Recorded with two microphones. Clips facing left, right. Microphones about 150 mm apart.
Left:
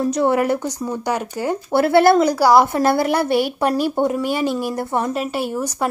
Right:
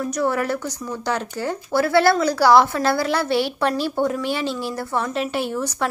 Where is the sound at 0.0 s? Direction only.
25° left (ahead or behind).